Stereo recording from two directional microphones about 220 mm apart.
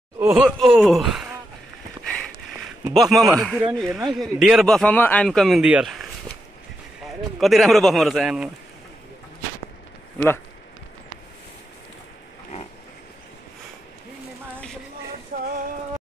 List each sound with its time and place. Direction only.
0.2 s groan: 10° right (ahead or behind)
0.5 s a man's voice: centre (ahead or behind)
2.9 s a man's voice: centre (ahead or behind)
7.3 s a man's voice: centre (ahead or behind)
10.1 s speech: 5° left (ahead or behind)
15.3 s a sound: 40° right (ahead or behind)